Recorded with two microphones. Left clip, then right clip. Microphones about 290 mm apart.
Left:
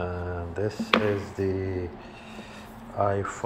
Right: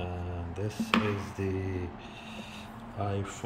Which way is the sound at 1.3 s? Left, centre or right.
Left.